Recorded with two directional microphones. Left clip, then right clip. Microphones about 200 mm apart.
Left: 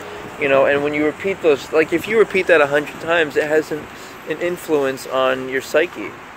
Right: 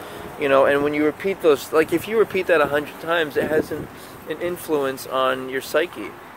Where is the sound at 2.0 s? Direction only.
Centre (ahead or behind).